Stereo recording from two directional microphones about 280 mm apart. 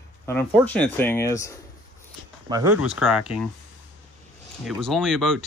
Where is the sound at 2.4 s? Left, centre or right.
Centre.